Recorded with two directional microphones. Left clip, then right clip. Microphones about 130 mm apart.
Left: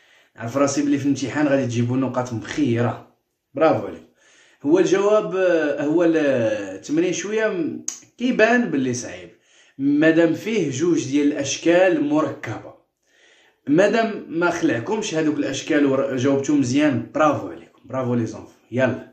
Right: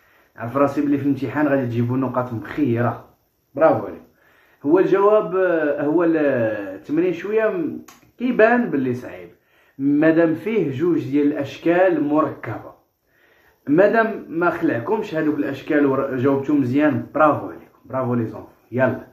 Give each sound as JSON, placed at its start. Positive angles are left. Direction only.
{"t": 0.4, "sound": "speech", "side_deg": 15}
{"t": 4.6, "sound": "speech", "side_deg": 10}
{"t": 10.9, "sound": "speech", "side_deg": 20}
{"t": 13.7, "sound": "speech", "side_deg": 20}